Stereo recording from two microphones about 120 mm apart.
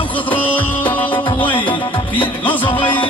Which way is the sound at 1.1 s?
45° left (ahead or behind).